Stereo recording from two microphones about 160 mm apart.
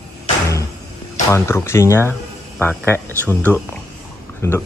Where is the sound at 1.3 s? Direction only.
15° left (ahead or behind).